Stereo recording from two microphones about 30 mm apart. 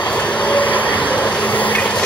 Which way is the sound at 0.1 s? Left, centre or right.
Left.